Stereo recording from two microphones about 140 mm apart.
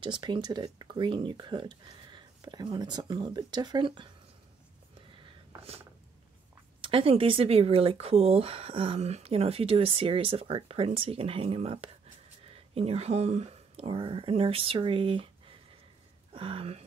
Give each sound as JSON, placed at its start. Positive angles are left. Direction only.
{"t": 0.0, "sound": "speech", "side_deg": -35}
{"t": 5.2, "sound": "a sound", "side_deg": -45}
{"t": 6.8, "sound": "speech", "side_deg": -40}
{"t": 16.3, "sound": "speech", "side_deg": -40}